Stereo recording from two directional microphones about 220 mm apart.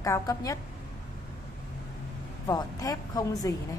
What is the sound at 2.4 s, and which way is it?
A woman's voice, 15° left (ahead or behind).